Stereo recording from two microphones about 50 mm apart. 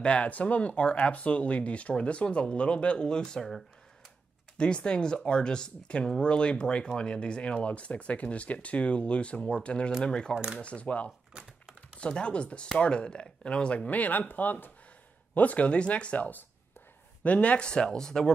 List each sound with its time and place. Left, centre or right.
0.0 s speech: left
4.6 s speech: centre
11.3 s typing: centre
12.0 s speech: left
13.8 s speech: left; by 18.3 s centre